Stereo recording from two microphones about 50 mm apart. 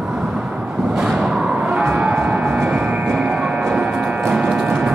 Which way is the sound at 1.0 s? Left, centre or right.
Centre.